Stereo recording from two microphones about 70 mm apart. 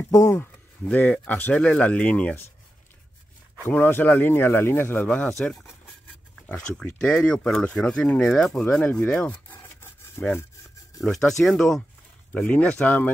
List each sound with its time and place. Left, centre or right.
0.1 s speech: left
0.4 s a sound: left
1.1 s speech: centre
3.7 s speech: left
6.5 s speech: centre
9.3 s rub: left
11.0 s speech: centre
12.4 s speech: left